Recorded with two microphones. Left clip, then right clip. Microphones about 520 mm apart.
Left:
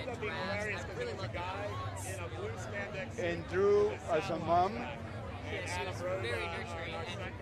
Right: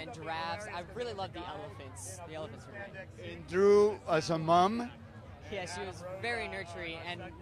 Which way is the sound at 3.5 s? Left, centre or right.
Centre.